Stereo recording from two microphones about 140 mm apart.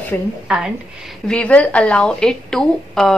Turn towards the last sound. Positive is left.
turn(degrees=5)  # may be behind; listen again after turning